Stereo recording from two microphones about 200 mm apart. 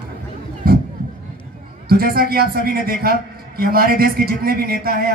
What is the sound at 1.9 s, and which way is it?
Speech, 50° right (ahead or behind).